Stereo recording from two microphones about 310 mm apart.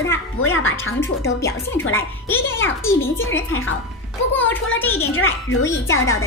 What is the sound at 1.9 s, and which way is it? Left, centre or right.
A woman's voice, centre.